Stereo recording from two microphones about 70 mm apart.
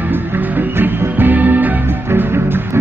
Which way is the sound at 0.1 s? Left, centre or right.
Right.